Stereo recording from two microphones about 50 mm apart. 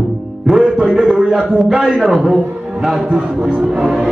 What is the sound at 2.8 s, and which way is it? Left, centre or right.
Speech, centre.